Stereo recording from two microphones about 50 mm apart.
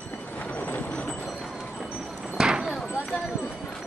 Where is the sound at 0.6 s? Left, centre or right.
Left.